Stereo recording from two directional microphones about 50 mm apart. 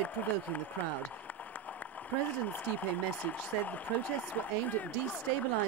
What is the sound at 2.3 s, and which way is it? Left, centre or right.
Speech, left.